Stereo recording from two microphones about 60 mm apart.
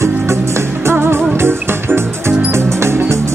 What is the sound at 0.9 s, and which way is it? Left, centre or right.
Music, right.